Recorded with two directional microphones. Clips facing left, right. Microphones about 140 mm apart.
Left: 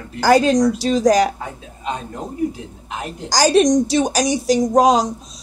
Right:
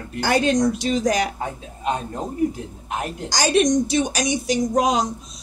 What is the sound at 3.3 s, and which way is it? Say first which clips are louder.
A woman's voice: left 5 dB; 35° left (ahead or behind).